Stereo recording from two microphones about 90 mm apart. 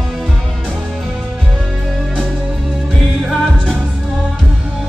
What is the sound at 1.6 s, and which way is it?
Music, 5° left (ahead or behind).